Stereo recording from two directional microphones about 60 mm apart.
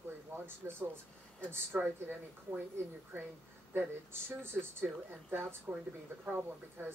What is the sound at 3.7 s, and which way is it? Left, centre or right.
Speech, right.